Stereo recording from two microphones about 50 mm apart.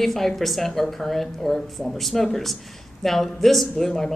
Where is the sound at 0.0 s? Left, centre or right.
Centre.